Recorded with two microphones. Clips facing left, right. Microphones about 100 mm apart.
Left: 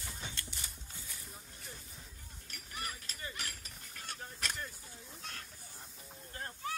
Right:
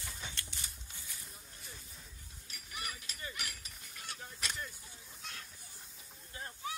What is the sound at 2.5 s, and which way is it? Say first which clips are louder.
Livestock: left 1 dB; 35° left (ahead or behind).